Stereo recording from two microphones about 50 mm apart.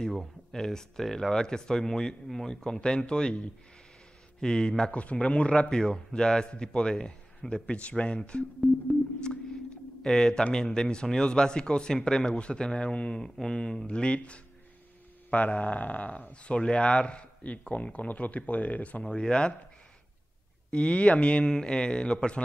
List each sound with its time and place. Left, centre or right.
0.5 s speech: centre
10.0 s speech: centre
20.7 s speech: left